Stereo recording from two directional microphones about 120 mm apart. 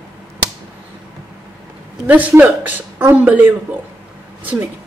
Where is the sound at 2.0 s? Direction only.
15° right (ahead or behind).